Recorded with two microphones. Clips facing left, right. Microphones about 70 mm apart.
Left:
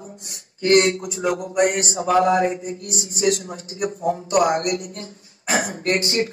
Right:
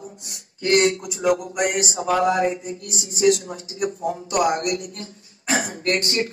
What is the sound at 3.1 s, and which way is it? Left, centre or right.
A man's voice, left.